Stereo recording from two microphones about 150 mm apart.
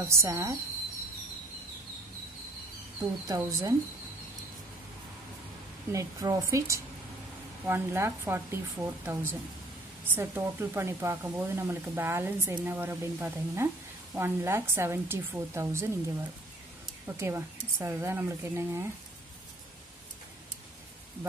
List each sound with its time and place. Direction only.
0.0 s a woman's voice: 20° right (ahead or behind)
3.0 s a woman's voice: 25° right (ahead or behind)
5.9 s a woman's voice: 20° right (ahead or behind)
17.2 s speech: 15° right (ahead or behind)